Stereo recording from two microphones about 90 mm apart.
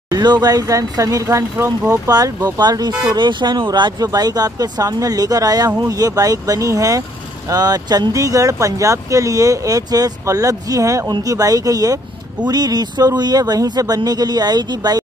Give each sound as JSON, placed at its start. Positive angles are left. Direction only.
{"t": 0.1, "sound": "speech", "side_deg": -50}
{"t": 3.1, "sound": "speech", "side_deg": -60}